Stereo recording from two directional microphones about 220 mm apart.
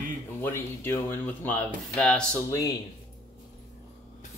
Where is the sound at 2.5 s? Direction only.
15° left (ahead or behind).